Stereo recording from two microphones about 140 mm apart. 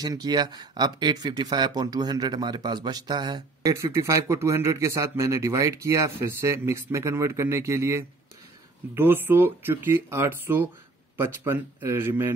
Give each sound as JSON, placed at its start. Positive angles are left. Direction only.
{"t": 0.0, "sound": "speech", "side_deg": -25}